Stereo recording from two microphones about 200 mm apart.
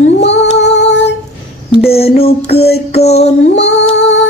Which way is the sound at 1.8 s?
30° left (ahead or behind).